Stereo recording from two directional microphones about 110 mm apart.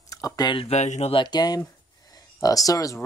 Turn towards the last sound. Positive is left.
turn(degrees=30)  # may be behind; listen again after turning